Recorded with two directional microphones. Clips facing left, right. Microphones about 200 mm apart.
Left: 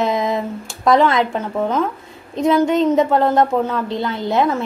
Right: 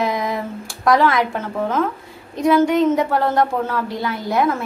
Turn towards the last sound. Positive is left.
turn(degrees=25)  # may be behind; listen again after turning